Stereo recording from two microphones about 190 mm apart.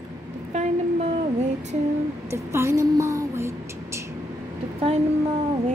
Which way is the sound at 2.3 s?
15° right (ahead or behind).